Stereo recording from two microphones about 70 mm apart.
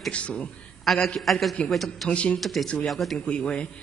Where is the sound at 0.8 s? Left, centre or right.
Centre.